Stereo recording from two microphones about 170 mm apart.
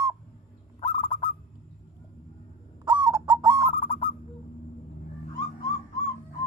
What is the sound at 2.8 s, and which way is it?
Owl, 25° right (ahead or behind).